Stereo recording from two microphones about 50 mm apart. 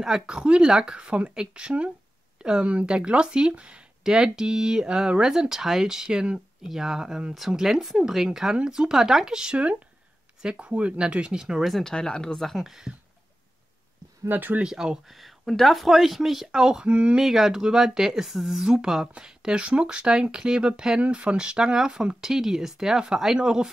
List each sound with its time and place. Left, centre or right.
0.3 s speech: centre
11.8 s speech: centre
12.4 s speech: centre
14.3 s speech: right
14.6 s speech: centre
15.1 s speech: centre
16.8 s speech: right
17.2 s speech: centre